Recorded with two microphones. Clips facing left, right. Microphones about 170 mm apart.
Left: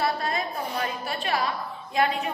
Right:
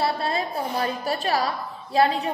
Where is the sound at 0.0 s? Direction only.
30° right (ahead or behind).